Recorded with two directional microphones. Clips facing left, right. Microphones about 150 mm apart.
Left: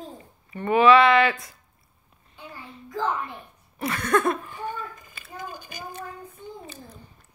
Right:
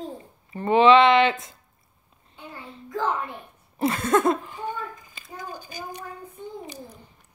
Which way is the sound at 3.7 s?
25° right (ahead or behind).